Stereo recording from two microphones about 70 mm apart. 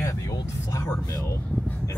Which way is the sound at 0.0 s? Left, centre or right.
Left.